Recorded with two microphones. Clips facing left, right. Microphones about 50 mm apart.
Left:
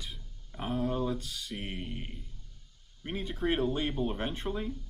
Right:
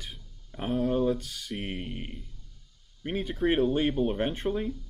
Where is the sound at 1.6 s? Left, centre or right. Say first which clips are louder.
Right 4 dB; right.